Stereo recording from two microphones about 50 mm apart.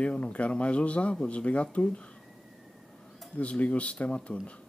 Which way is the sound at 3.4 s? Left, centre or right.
Left.